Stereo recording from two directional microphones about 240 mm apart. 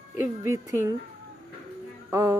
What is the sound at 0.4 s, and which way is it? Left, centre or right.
Speech, centre.